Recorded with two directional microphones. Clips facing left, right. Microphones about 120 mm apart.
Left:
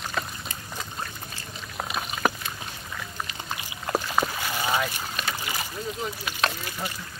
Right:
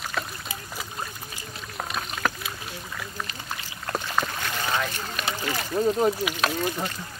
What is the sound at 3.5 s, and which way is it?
Boat, 5° left (ahead or behind).